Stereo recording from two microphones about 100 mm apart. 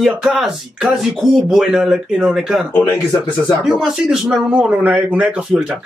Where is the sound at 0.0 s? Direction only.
5° right (ahead or behind).